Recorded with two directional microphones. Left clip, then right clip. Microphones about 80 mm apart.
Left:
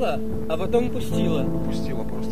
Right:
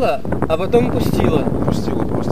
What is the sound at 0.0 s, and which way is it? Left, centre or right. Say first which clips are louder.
Speech: right 8 dB; right.